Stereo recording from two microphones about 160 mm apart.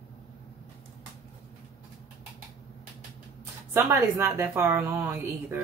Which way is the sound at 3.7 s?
15° right (ahead or behind).